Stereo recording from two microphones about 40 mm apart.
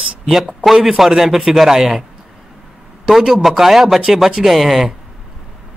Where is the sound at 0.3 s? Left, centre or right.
Centre.